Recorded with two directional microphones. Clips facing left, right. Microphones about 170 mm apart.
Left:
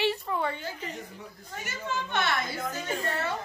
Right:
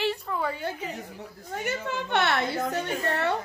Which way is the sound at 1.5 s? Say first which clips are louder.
Right 4 dB; 60° right (ahead or behind).